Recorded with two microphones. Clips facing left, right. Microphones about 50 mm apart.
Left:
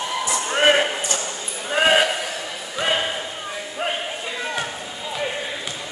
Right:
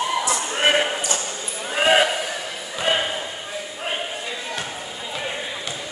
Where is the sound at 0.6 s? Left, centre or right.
Centre.